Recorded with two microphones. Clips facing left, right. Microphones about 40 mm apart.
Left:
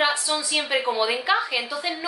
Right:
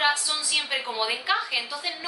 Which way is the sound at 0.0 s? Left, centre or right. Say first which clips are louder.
Left 2 dB; centre.